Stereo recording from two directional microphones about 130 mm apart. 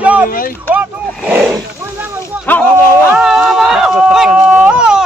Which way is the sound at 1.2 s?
10° right (ahead or behind).